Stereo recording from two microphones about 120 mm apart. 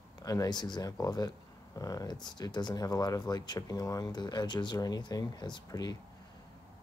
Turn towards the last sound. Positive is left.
turn(degrees=40)  # may be behind; listen again after turning